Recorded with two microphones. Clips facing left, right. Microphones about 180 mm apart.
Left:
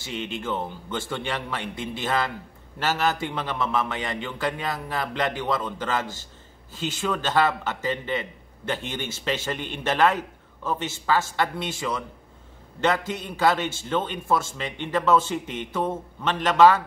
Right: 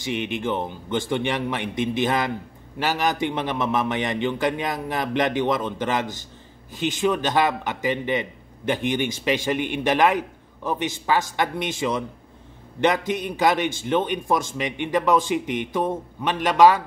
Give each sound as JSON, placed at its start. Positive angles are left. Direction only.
{"t": 0.0, "sound": "a man's voice", "side_deg": -15}